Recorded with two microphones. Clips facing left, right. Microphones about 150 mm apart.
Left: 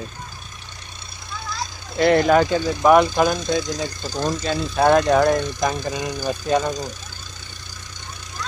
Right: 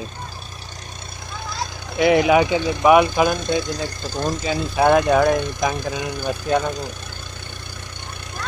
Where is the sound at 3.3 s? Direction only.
55° right (ahead or behind).